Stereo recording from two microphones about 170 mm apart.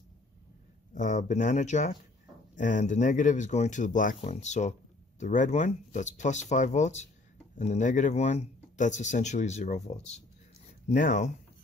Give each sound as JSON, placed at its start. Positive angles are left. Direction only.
{"t": 0.9, "sound": "speech", "side_deg": 50}